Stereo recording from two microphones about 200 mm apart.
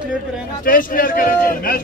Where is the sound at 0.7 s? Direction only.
45° left (ahead or behind).